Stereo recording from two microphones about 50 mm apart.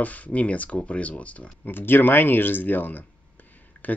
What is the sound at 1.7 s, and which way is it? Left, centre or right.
Speech, left.